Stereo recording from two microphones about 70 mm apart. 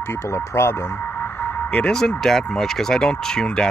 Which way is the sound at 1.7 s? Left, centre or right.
Centre.